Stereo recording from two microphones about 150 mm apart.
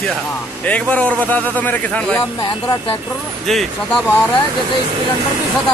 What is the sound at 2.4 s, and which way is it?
Speech, 35° left (ahead or behind).